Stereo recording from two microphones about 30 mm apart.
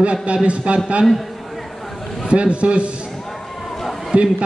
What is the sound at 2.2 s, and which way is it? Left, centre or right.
Speech, right.